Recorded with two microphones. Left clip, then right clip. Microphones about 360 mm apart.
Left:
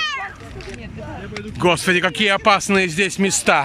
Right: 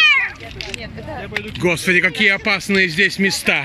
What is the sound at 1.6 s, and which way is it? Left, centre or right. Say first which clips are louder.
Speech: right 1 dB; centre.